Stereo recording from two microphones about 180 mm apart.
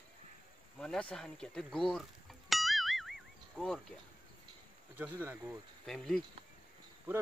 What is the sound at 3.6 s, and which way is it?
Speech, 5° right (ahead or behind).